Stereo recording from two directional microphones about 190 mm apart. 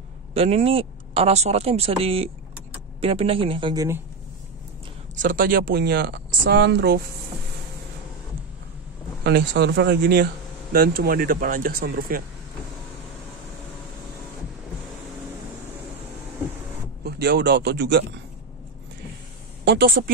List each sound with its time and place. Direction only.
0.3 s a man's voice: 30° right (ahead or behind)
5.1 s speech: 45° right (ahead or behind); by 7.0 s 60° right (ahead or behind)
9.2 s speech: 60° right (ahead or behind)
17.0 s a man's voice: 60° right (ahead or behind)
19.6 s speech: 60° right (ahead or behind)